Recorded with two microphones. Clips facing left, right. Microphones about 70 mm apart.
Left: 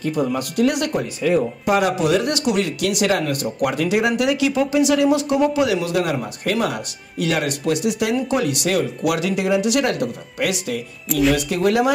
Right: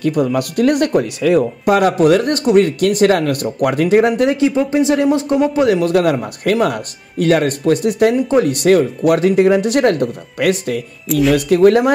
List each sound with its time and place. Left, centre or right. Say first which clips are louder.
0.0 s speech: right 5 dB; right
1.2 s speech: right 3 dB; right
11.1 s speech: right 4 dB; centre
11.3 s speech: right 8 dB; right